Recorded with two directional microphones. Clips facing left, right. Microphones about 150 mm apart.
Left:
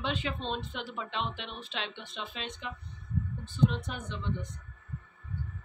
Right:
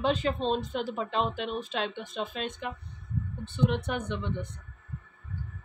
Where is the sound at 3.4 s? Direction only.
65° right (ahead or behind).